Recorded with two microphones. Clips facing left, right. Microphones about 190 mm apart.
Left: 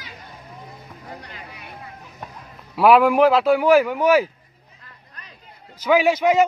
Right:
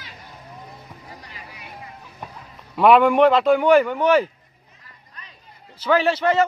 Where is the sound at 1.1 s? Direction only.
60° left (ahead or behind).